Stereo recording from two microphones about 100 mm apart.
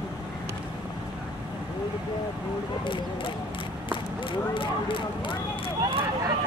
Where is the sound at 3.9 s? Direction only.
55° left (ahead or behind).